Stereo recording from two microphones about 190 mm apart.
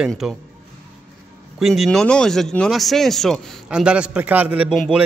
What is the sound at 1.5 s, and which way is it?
Speech, centre (ahead or behind).